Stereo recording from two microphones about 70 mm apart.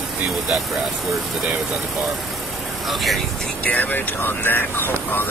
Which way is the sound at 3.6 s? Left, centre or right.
Left.